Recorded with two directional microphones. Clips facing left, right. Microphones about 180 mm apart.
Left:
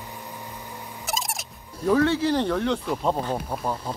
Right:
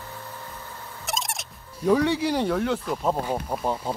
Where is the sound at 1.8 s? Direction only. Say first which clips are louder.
Left 1 dB; 15° right (ahead or behind).